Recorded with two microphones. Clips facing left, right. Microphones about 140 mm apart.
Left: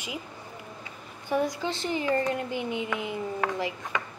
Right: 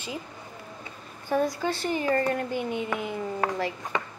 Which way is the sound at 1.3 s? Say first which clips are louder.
Right 2 dB; 15° left (ahead or behind).